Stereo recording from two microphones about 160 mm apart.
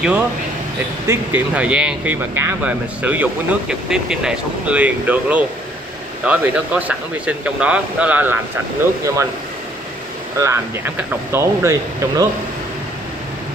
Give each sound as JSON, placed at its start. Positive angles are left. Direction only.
{"t": 1.0, "sound": "speech", "side_deg": -15}
{"t": 10.4, "sound": "speech", "side_deg": -15}